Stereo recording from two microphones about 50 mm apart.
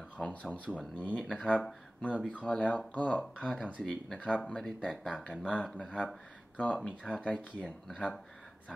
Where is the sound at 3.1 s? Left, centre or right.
Centre.